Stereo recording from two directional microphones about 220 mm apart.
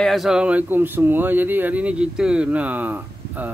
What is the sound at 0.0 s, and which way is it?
Speech, centre (ahead or behind).